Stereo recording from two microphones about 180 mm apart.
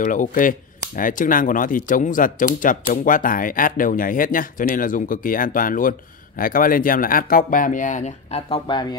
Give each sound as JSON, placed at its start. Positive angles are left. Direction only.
{"t": 0.0, "sound": "speech", "side_deg": 45}